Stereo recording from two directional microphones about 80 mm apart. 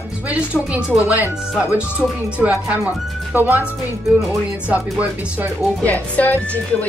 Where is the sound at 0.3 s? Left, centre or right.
Centre.